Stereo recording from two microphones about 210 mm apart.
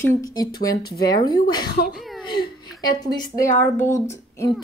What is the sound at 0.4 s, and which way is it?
Speech, 15° left (ahead or behind).